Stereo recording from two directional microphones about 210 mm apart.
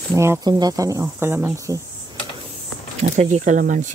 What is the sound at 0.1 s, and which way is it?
Speech, 15° right (ahead or behind).